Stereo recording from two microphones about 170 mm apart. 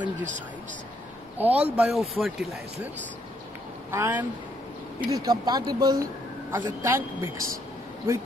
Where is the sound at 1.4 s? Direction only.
10° right (ahead or behind).